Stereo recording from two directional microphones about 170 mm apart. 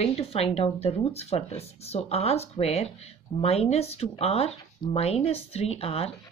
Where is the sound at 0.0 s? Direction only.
35° left (ahead or behind).